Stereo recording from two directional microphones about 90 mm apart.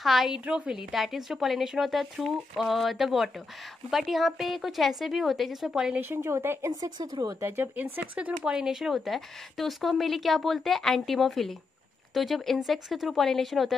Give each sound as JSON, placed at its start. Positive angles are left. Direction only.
{"t": 0.0, "sound": "a woman's voice", "side_deg": 0}
{"t": 5.9, "sound": "a woman's voice", "side_deg": -25}
{"t": 6.7, "sound": "a woman's voice", "side_deg": -45}
{"t": 7.4, "sound": "speech", "side_deg": -25}